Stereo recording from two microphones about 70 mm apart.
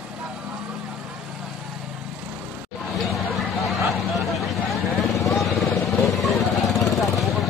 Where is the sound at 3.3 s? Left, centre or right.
Centre.